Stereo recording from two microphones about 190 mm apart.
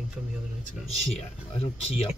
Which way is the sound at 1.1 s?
30° left (ahead or behind).